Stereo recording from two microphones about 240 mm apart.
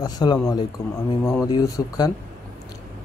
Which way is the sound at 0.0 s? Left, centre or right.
Centre.